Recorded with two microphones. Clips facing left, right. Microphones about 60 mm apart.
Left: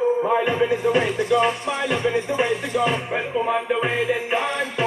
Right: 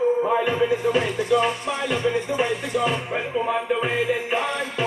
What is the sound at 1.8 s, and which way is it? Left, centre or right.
Music, centre.